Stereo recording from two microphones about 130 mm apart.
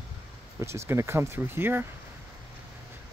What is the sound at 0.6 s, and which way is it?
Speech, 20° right (ahead or behind).